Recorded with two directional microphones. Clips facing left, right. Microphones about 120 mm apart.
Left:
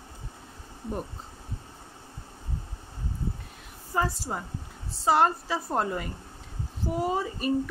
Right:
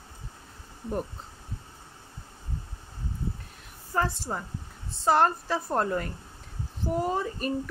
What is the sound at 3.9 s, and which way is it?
A woman's voice, 5° left (ahead or behind).